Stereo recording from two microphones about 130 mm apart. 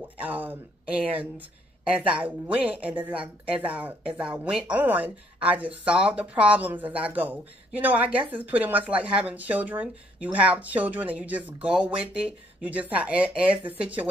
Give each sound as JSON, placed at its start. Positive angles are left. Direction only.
{"t": 0.2, "sound": "speech", "side_deg": -15}